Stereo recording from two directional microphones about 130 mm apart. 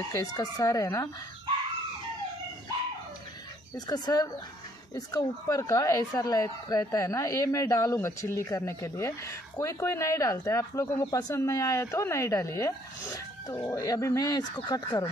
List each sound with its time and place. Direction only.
0.1 s speech: 30° left (ahead or behind)
3.7 s speech: 30° left (ahead or behind)